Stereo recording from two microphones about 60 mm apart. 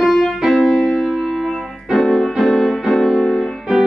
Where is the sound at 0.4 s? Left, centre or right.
Centre.